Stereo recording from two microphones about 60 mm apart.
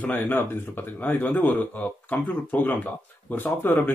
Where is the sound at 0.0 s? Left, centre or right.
Left.